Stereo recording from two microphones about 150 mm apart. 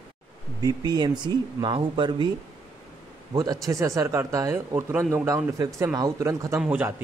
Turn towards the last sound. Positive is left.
turn(degrees=-10)  # may be behind; listen again after turning